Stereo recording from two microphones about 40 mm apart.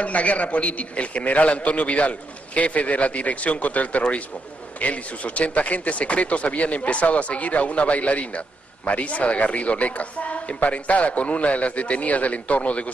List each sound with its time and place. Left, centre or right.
0.0 s speech: left